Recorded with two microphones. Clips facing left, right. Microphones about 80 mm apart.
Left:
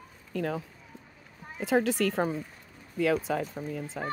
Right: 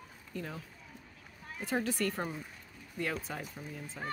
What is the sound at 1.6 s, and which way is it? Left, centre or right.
Speech, left.